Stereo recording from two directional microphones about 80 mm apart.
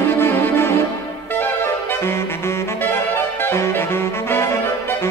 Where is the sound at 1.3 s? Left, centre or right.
Left.